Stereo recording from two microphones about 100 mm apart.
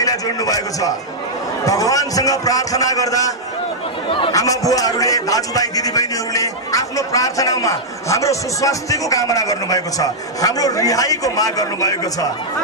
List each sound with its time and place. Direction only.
0.0 s a man's voice: 35° left (ahead or behind)